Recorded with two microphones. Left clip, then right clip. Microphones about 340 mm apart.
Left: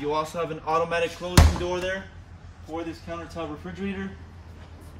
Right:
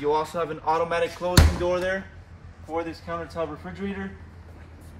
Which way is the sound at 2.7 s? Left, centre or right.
Centre.